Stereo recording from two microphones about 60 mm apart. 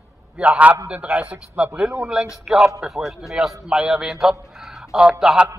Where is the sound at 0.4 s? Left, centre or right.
Right.